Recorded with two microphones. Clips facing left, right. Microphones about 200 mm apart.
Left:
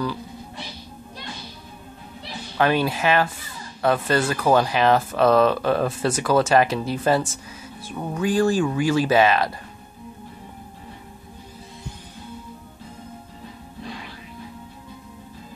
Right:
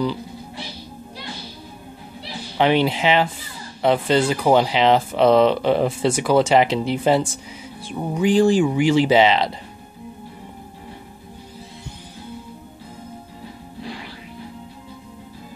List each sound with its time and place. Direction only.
2.5 s speech: 20° right (ahead or behind)